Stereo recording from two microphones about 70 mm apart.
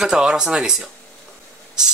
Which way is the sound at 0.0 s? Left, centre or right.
Centre.